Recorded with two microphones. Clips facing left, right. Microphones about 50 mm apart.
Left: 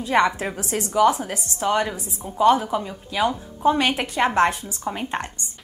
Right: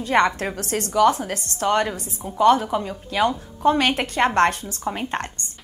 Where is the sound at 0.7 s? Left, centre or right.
Centre.